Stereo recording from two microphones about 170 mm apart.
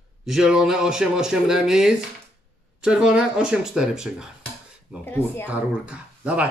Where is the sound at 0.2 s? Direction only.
5° right (ahead or behind).